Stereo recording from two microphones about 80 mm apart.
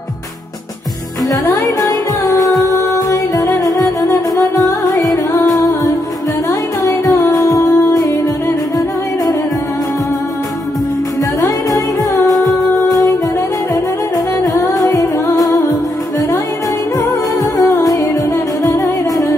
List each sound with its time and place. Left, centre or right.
1.3 s music: left
6.8 s music: left
11.4 s music: left
14.4 s music: left
17.6 s music: left